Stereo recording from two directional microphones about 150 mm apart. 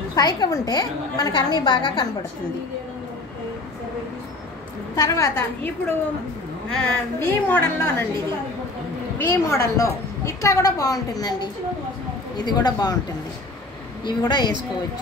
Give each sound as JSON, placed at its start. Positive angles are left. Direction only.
{"t": 0.1, "sound": "a woman's voice", "side_deg": 25}
{"t": 4.9, "sound": "a woman's voice", "side_deg": 20}
{"t": 6.8, "sound": "a woman's voice", "side_deg": 10}
{"t": 9.2, "sound": "a woman's voice", "side_deg": 20}
{"t": 14.0, "sound": "a woman's voice", "side_deg": 30}